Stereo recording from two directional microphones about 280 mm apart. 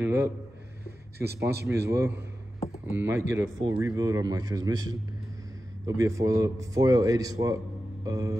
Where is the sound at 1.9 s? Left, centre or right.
Centre.